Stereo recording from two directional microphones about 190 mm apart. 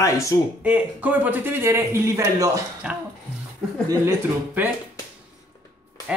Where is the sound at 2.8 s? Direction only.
5° right (ahead or behind).